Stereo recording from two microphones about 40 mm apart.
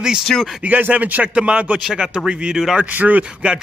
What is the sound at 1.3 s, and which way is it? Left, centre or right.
Speech, right.